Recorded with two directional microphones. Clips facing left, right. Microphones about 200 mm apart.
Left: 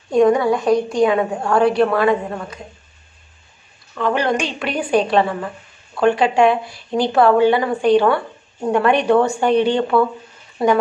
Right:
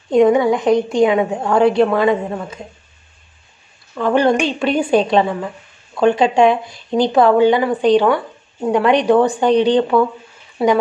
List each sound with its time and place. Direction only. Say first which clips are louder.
0.1 s a woman's voice: right 2 dB; 20° right (ahead or behind)
4.0 s a woman's voice: right 4 dB; 30° right (ahead or behind)